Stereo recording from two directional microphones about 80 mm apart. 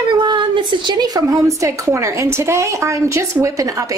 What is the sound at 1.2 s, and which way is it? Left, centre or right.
A woman's voice, right.